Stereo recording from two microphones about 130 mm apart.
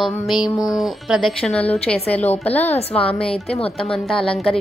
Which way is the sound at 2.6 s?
55° left (ahead or behind).